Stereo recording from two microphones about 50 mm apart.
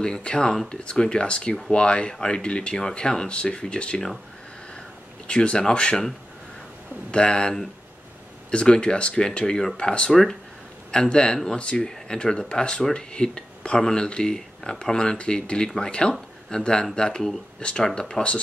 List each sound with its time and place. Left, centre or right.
0.0 s speech: centre
5.3 s speech: centre
7.1 s speech: centre